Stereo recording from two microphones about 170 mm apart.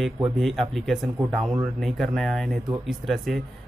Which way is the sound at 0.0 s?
Centre (ahead or behind).